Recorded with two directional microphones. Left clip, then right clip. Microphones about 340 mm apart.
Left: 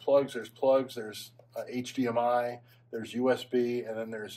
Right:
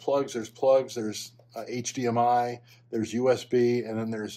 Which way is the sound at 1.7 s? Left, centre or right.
Right.